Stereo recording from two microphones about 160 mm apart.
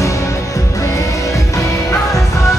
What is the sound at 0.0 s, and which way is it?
Music, 20° left (ahead or behind).